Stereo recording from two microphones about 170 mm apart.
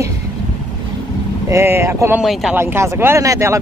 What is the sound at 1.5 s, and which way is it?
Speech, 15° right (ahead or behind).